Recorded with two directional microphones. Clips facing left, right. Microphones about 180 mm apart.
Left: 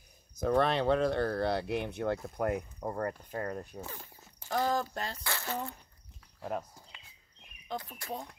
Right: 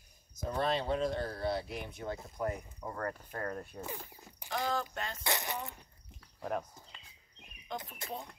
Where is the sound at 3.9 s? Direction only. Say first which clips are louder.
Right 3 dB; 10° right (ahead or behind).